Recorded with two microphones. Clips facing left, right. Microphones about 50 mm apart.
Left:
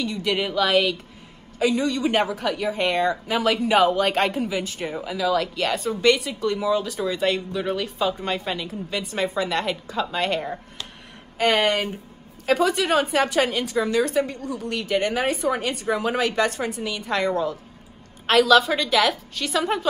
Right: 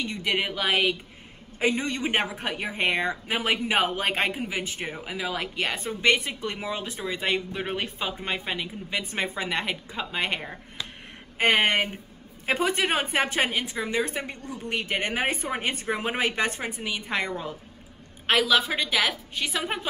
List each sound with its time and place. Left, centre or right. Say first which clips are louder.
0.0 s a woman's voice: left 3 dB; right
1.6 s a woman's voice: left 4 dB; right
4.1 s a woman's voice: left 4 dB; centre
4.5 s a woman's voice: left 4 dB; right
8.1 s a woman's voice: left 4 dB; centre
18.2 s a woman's voice: left 6 dB; centre